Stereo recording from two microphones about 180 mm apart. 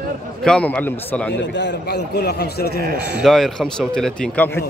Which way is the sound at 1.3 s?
75° left (ahead or behind).